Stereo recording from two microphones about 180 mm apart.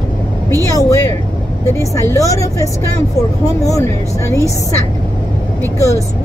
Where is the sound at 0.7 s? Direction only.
20° left (ahead or behind).